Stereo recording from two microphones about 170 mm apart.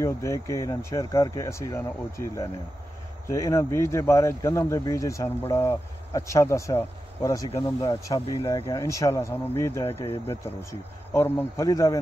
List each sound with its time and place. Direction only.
0.0 s speech: 20° left (ahead or behind)